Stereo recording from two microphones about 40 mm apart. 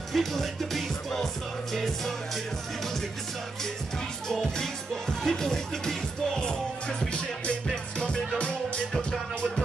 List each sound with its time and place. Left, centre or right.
0.1 s music: centre
4.3 s music: centre; by 8.8 s left